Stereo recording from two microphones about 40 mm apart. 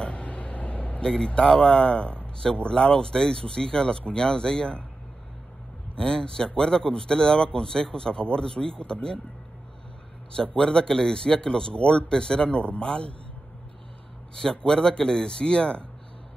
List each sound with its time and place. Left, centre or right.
0.0 s a sound: left
1.0 s speech: centre
5.9 s speech: left
10.3 s speech: left
12.4 s speech: left
14.3 s speech: centre